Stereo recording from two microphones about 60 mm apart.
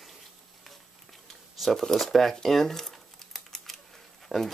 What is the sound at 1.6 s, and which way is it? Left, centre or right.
Speech, centre.